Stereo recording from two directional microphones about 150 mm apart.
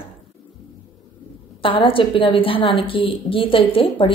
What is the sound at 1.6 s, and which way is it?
A woman's voice, 35° left (ahead or behind).